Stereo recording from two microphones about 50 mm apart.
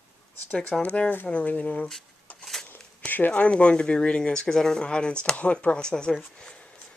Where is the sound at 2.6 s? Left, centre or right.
Left.